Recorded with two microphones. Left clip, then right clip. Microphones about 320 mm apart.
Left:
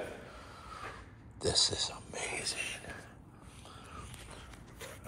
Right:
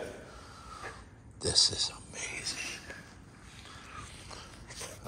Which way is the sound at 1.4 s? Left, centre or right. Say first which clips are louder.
Right 3 dB; centre.